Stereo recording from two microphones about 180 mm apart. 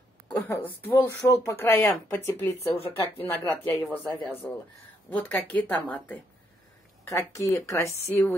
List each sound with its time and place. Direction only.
0.3 s speech: 10° left (ahead or behind)